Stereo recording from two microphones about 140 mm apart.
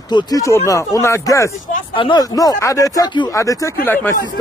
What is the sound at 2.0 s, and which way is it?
Speech, 30° left (ahead or behind).